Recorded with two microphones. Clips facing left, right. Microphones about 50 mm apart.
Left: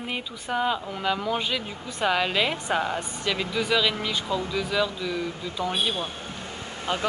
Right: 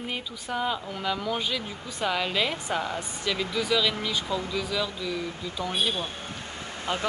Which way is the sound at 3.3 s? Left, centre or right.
Centre.